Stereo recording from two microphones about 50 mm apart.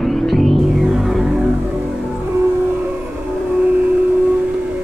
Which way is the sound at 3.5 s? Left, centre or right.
Right.